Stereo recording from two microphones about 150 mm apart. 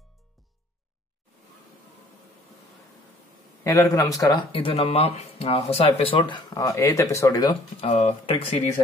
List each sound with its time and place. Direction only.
3.6 s speech: 20° left (ahead or behind)
7.8 s speech: 40° left (ahead or behind)